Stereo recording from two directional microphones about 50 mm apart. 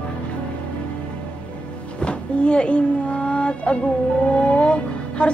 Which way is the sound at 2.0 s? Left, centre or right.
Left.